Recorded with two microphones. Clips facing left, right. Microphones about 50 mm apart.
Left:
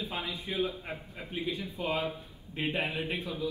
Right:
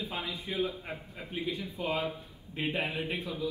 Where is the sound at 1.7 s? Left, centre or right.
Left.